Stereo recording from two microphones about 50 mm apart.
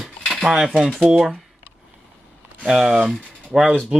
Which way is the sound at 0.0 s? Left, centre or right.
Centre.